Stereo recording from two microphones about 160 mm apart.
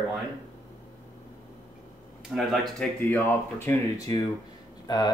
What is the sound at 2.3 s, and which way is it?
Speech, centre (ahead or behind).